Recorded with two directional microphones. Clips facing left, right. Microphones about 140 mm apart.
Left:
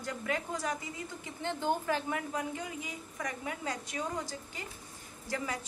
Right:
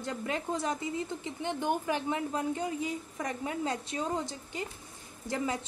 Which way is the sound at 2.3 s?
30° right (ahead or behind).